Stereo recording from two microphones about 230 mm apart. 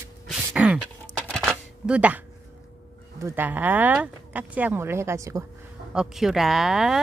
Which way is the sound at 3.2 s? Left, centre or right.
Centre.